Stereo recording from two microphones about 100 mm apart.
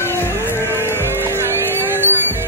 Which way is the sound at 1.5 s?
25° left (ahead or behind).